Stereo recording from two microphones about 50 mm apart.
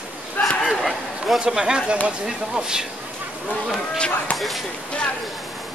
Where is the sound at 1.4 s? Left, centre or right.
Centre.